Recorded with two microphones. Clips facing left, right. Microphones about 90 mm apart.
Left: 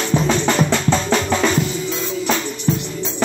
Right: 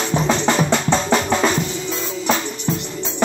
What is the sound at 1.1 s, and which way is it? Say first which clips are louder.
Drum: even; 10° right (ahead or behind).